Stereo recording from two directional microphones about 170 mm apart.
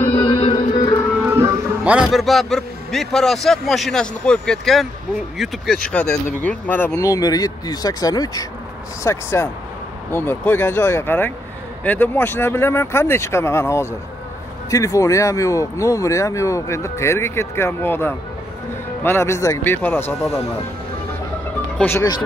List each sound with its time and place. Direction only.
0.1 s music: 30° left (ahead or behind)
1.2 s a sound: 15° right (ahead or behind)
2.0 s speech: centre (ahead or behind)
21.7 s speech: 10° left (ahead or behind)